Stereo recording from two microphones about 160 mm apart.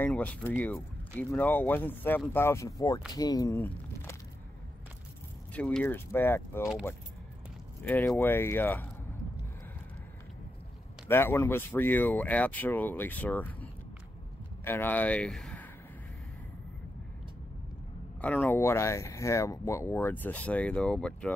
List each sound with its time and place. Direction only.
0.0 s speech: 10° left (ahead or behind)
5.5 s speech: 5° left (ahead or behind)
7.8 s speech: 10° left (ahead or behind)
11.1 s speech: 15° left (ahead or behind)
18.2 s speech: 10° left (ahead or behind)